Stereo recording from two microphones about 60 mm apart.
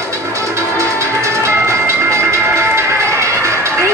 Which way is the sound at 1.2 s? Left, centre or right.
Right.